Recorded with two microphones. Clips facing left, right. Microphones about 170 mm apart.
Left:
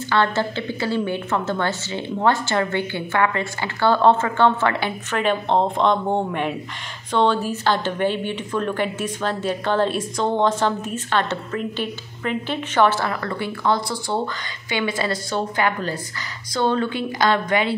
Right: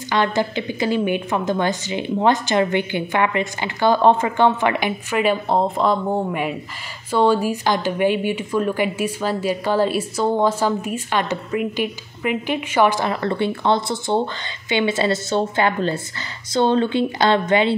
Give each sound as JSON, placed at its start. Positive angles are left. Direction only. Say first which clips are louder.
{"t": 0.1, "sound": "speech", "louder": "right 1 dB", "side_deg": -15}